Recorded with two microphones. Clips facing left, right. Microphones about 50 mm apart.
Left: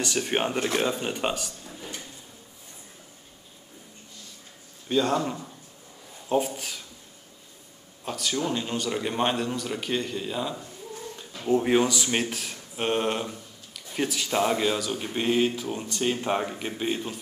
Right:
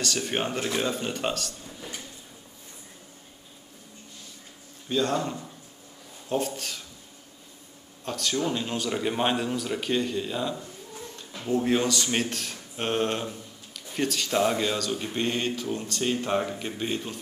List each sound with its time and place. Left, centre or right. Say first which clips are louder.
0.0 s speech: left 2 dB; centre
4.8 s speech: left 2 dB; centre
8.0 s speech: right 1 dB; centre
11.1 s speech: left 3 dB; centre